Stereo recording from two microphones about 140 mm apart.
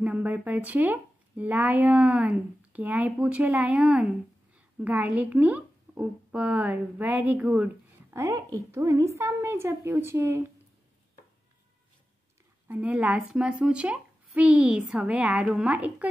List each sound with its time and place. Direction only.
0.0 s speech: 10° right (ahead or behind)
8.2 s a woman's voice: 25° right (ahead or behind)
12.6 s speech: 10° right (ahead or behind)